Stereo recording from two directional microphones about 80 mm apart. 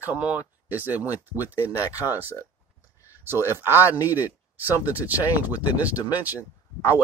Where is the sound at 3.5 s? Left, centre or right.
Right.